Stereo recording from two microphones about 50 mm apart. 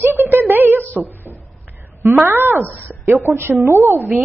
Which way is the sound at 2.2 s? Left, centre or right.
Right.